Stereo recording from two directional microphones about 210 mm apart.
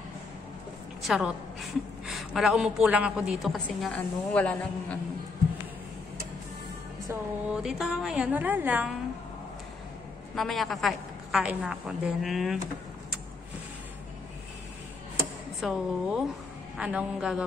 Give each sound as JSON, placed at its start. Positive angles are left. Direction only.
{"t": 1.0, "sound": "a woman's voice", "side_deg": 0}
{"t": 7.1, "sound": "a woman's voice", "side_deg": -5}
{"t": 10.3, "sound": "a woman's voice", "side_deg": 0}
{"t": 15.6, "sound": "a woman's voice", "side_deg": 0}